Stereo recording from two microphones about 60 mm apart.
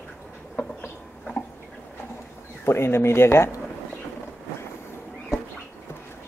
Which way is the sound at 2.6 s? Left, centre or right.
Left.